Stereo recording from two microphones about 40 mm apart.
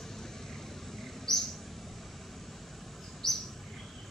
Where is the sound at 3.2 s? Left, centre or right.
Centre.